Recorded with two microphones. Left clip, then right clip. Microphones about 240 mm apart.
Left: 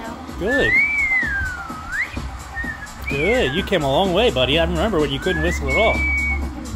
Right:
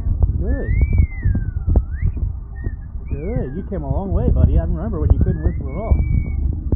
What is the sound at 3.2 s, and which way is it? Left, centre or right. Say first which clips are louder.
Speech: left 10 dB; left.